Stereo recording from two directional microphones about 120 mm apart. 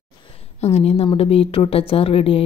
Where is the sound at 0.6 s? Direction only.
60° left (ahead or behind).